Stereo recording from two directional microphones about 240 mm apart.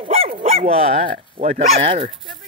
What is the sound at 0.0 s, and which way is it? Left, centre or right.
Speech, right.